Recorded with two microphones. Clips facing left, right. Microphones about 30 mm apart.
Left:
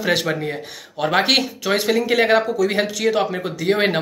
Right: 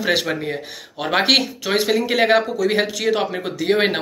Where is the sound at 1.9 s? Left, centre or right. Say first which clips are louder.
Left 1 dB; right.